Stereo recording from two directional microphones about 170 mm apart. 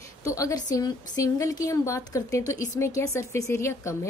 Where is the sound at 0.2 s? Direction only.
20° left (ahead or behind).